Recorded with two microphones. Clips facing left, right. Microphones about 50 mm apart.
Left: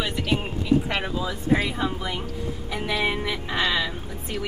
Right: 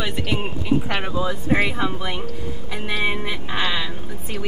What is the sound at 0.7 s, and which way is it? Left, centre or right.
Speech, right.